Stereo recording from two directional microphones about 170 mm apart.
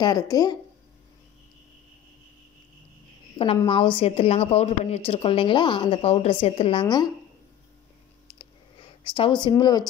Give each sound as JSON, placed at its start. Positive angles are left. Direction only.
{"t": 0.0, "sound": "speech", "side_deg": 20}
{"t": 3.3, "sound": "a woman's voice", "side_deg": 30}
{"t": 9.0, "sound": "speech", "side_deg": 30}